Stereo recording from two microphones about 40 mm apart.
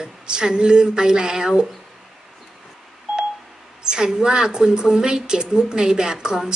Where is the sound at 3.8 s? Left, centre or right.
Centre.